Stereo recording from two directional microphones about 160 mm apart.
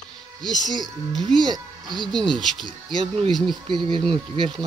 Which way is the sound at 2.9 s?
35° right (ahead or behind).